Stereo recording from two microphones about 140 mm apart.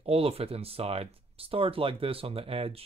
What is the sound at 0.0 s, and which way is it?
Speech, 45° right (ahead or behind).